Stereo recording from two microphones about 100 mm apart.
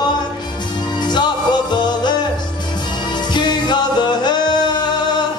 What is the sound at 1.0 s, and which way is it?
Music, 45° left (ahead or behind).